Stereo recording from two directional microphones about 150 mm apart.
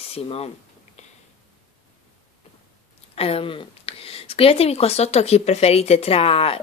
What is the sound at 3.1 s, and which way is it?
Speech, 40° left (ahead or behind).